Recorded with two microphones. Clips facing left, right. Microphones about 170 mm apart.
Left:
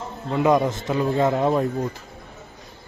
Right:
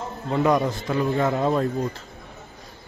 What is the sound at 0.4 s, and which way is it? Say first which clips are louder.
A man's voice: left 2 dB; 20° left (ahead or behind).